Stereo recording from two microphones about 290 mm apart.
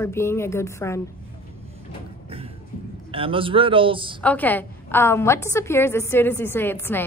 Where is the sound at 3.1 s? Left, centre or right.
Centre.